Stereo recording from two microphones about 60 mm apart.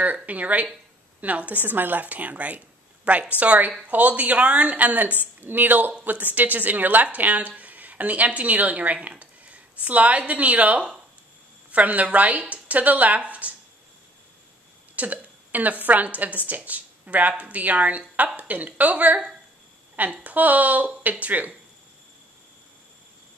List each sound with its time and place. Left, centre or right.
0.0 s a woman's voice: right
15.0 s a sound: right
15.8 s a woman's voice: right